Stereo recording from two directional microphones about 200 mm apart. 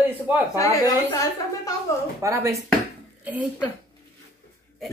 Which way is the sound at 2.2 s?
15° right (ahead or behind).